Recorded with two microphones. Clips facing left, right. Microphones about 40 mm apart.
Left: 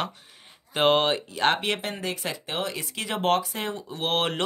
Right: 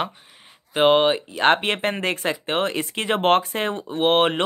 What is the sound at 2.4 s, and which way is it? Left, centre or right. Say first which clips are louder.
Speech: right 7 dB; right.